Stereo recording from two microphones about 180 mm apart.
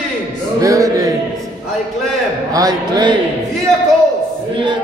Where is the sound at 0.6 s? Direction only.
15° right (ahead or behind).